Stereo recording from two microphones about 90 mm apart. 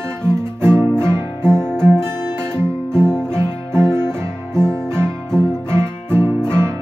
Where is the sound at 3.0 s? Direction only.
10° left (ahead or behind).